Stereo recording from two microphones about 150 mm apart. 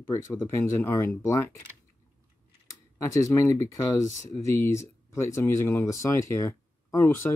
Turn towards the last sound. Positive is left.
turn(degrees=15)  # may be behind; listen again after turning